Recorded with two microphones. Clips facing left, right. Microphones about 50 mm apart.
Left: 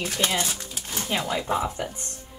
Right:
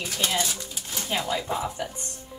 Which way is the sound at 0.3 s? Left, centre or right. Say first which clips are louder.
Even; left.